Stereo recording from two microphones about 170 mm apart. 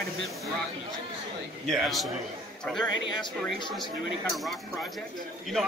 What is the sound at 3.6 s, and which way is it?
Speech, 25° left (ahead or behind).